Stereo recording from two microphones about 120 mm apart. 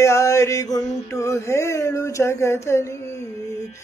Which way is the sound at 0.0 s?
25° left (ahead or behind).